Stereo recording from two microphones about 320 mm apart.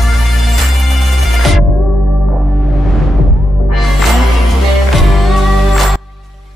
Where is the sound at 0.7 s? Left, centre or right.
Centre.